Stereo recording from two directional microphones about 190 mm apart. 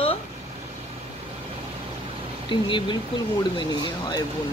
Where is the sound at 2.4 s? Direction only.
25° left (ahead or behind).